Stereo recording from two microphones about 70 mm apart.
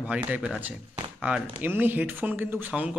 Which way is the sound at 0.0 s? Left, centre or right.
Right.